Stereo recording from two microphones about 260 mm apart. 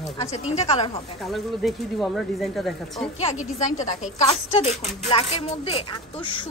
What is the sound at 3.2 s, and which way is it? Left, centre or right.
Speech, left.